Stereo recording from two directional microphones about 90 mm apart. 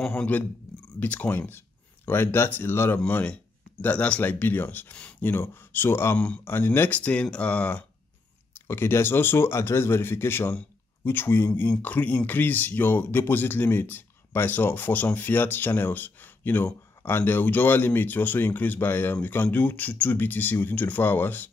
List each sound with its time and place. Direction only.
0.1 s speech: 20° left (ahead or behind)